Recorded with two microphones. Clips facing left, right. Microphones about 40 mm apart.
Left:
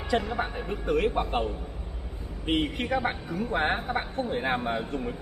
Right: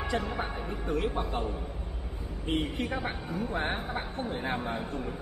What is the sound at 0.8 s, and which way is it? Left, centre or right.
A man's voice, left.